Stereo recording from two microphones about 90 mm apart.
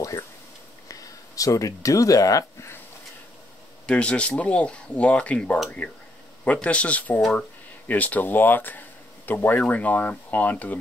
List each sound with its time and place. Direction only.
0.8 s speech: 40° left (ahead or behind)
3.8 s speech: 15° left (ahead or behind)